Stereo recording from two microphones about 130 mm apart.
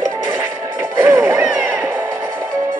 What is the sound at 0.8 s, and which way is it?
Music, 15° right (ahead or behind).